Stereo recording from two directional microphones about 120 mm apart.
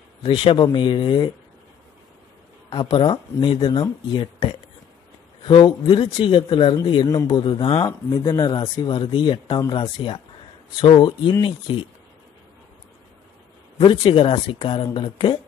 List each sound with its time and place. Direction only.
0.2 s speech: 50° left (ahead or behind)
2.7 s speech: 45° left (ahead or behind)
13.7 s speech: 45° left (ahead or behind)